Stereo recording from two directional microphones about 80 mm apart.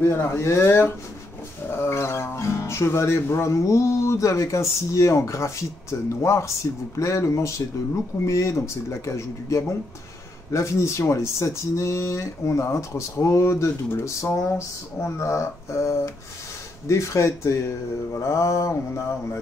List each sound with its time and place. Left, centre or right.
0.0 s speech: left